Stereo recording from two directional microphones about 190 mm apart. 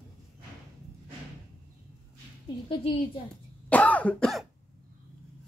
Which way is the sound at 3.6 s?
10° left (ahead or behind).